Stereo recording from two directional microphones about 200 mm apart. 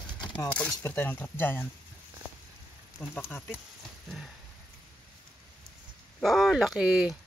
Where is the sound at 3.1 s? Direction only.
10° left (ahead or behind).